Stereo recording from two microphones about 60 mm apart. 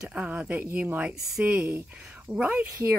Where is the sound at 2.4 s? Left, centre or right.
Right.